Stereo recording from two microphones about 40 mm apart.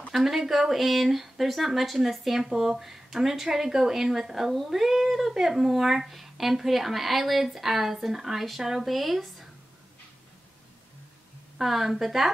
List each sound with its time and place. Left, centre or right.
0.1 s speech: centre
11.5 s speech: centre